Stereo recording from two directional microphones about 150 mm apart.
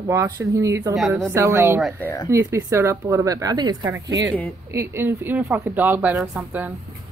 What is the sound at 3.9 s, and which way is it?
Speech, 15° right (ahead or behind).